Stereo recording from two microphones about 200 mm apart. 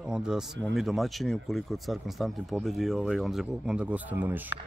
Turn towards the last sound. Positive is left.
turn(degrees=-10)  # may be behind; listen again after turning